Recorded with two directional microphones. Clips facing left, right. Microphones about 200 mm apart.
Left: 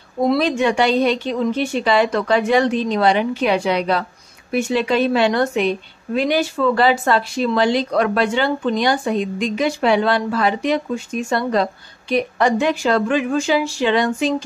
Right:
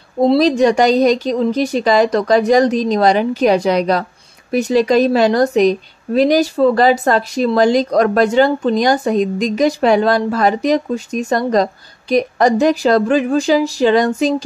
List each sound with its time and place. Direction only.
0.2 s a woman's voice: 30° right (ahead or behind)